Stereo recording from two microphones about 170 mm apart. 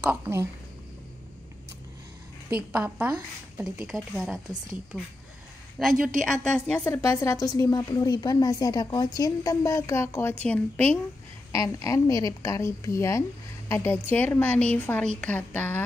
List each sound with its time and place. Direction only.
0.0 s a woman's voice: 15° right (ahead or behind)
2.7 s a woman's voice: 10° right (ahead or behind)
5.8 s a woman's voice: centre (ahead or behind)